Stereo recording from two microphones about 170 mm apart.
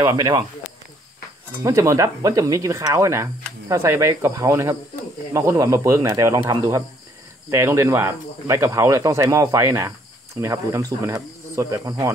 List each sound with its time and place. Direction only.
0.0 s speech: 20° right (ahead or behind)
1.6 s speech: 20° right (ahead or behind)